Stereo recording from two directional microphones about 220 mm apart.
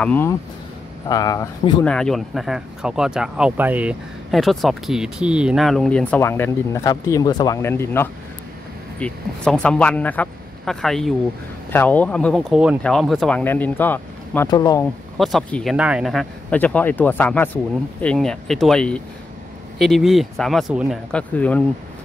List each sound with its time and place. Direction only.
0.0 s speech: 10° left (ahead or behind)
1.9 s speech: 5° left (ahead or behind)
15.1 s speech: centre (ahead or behind)